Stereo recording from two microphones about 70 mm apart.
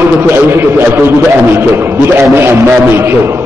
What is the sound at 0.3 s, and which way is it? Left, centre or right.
Speech, right.